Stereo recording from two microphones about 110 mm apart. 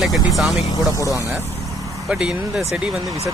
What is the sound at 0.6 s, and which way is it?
Speech, 30° left (ahead or behind).